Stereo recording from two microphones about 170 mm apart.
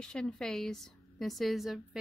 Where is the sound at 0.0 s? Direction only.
5° left (ahead or behind).